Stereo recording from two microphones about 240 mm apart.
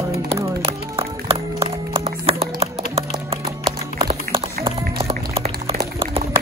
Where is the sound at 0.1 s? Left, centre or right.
Centre.